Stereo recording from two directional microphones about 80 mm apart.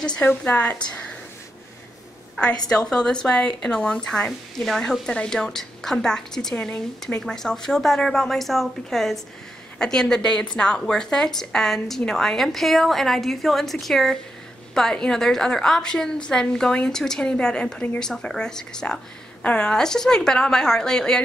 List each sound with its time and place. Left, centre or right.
0.2 s speech: centre
2.7 s a woman's voice: centre